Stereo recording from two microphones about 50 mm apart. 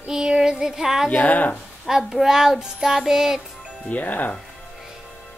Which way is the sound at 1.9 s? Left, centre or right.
Centre.